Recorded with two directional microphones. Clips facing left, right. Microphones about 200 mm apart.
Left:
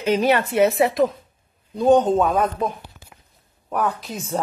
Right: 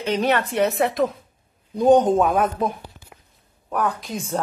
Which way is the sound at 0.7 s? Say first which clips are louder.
Left 3 dB; centre (ahead or behind).